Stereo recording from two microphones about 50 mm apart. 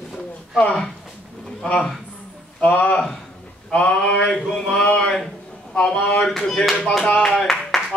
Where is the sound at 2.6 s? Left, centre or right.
Left.